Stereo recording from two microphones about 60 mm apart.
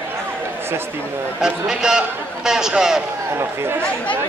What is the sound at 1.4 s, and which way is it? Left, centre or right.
A man's voice, centre.